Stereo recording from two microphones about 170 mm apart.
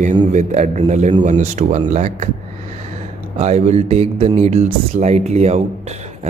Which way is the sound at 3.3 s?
40° right (ahead or behind).